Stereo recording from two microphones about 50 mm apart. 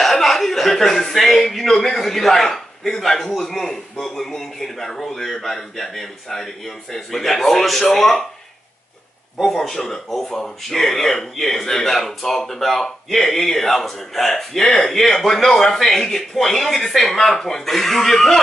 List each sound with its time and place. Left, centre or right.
0.0 s a man's voice: centre
9.5 s speech: centre